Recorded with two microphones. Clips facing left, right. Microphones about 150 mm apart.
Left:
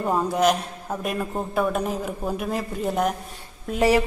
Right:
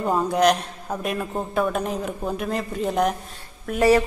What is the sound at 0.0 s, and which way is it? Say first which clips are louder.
A man's voice: right 1 dB; 5° left (ahead or behind).